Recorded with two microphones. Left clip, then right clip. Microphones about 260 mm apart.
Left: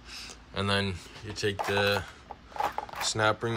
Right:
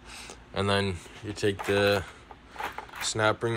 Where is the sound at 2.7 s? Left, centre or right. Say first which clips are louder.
Left 1 dB; centre.